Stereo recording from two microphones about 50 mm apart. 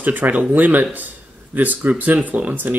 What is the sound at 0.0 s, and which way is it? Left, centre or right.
Speech, right.